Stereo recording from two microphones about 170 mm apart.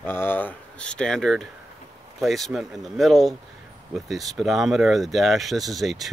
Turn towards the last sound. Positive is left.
turn(degrees=0)  # may be behind; listen again after turning